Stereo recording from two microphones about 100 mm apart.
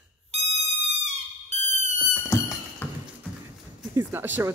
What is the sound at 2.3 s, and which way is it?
Thunk, 30° left (ahead or behind).